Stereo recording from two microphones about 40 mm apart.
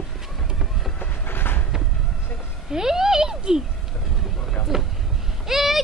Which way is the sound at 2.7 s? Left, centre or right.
Centre.